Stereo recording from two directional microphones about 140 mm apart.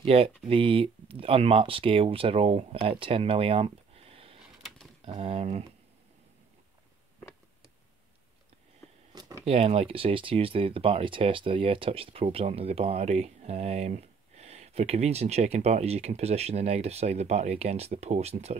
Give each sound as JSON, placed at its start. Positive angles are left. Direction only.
{"t": 0.0, "sound": "speech", "side_deg": -45}
{"t": 9.1, "sound": "a sound", "side_deg": -30}
{"t": 9.4, "sound": "speech", "side_deg": -50}